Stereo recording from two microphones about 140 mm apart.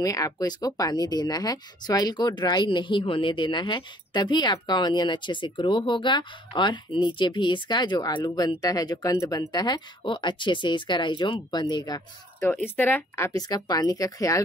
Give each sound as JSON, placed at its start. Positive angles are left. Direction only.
{"t": 0.0, "sound": "speech", "side_deg": 25}
{"t": 12.6, "sound": "speech", "side_deg": 15}